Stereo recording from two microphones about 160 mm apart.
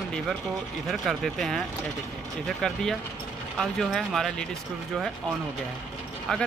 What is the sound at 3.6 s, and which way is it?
Speech, 5° left (ahead or behind).